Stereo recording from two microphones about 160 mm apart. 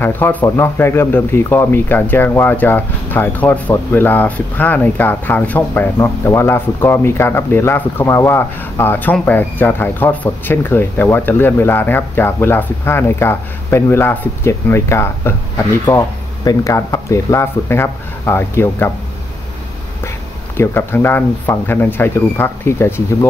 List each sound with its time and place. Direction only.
0.0 s speech: 10° left (ahead or behind)
20.5 s speech: 15° left (ahead or behind)